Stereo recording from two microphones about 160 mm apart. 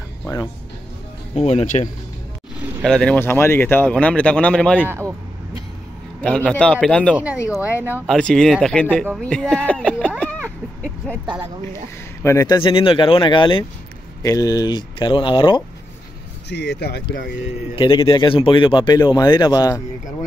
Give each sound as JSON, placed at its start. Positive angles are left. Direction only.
{"t": 1.3, "sound": "speech", "side_deg": 40}
{"t": 2.8, "sound": "speech", "side_deg": 5}
{"t": 4.8, "sound": "speech", "side_deg": -15}
{"t": 6.2, "sound": "speech", "side_deg": 5}
{"t": 12.2, "sound": "speech", "side_deg": 20}
{"t": 12.6, "sound": "speech", "side_deg": 35}
{"t": 16.4, "sound": "speech", "side_deg": 90}
{"t": 17.7, "sound": "speech", "side_deg": 30}